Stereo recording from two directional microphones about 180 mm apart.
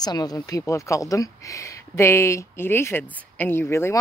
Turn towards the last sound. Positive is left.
turn(degrees=15)  # may be behind; listen again after turning